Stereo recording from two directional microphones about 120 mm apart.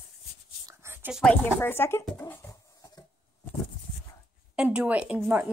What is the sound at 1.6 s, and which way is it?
Speech, 20° left (ahead or behind).